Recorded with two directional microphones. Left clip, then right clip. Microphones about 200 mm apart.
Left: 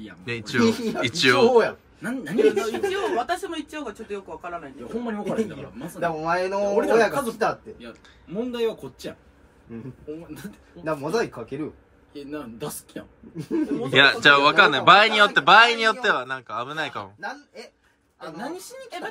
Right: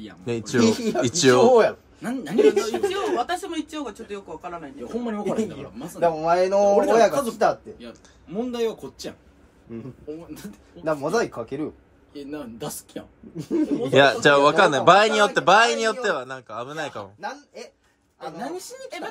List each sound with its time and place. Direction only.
0.2 s speech: 15° right (ahead or behind)
0.6 s a man's voice: centre (ahead or behind)
1.0 s speech: 20° right (ahead or behind)
1.5 s a man's voice: centre (ahead or behind)
13.9 s a man's voice: 15° right (ahead or behind)